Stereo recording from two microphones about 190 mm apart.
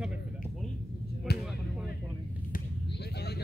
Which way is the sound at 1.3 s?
60° left (ahead or behind).